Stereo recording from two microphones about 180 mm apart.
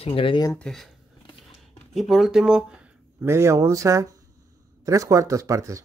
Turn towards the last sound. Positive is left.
turn(degrees=-20)  # may be behind; listen again after turning